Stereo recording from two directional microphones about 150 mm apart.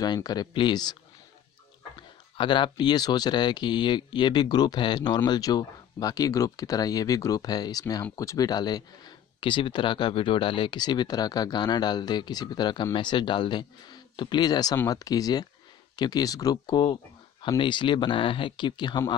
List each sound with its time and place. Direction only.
0.0 s speech: 25° left (ahead or behind)
2.3 s speech: 30° left (ahead or behind)